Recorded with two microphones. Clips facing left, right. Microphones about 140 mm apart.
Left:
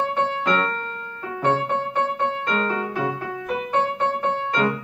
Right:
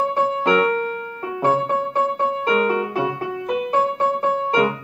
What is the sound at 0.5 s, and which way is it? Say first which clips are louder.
Music: right 6 dB; 10° right (ahead or behind).